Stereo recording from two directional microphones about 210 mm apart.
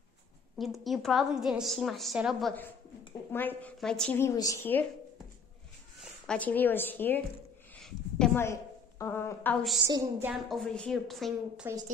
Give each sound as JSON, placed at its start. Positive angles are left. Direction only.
{"t": 0.6, "sound": "a woman's voice", "side_deg": 0}
{"t": 5.9, "sound": "speech", "side_deg": 5}
{"t": 7.7, "sound": "a sound", "side_deg": 5}
{"t": 9.8, "sound": "a woman's voice", "side_deg": -15}
{"t": 10.3, "sound": "a woman's voice", "side_deg": 0}